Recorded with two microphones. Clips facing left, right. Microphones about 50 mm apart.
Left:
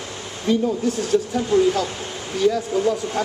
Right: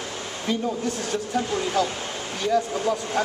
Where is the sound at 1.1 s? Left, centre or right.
Centre.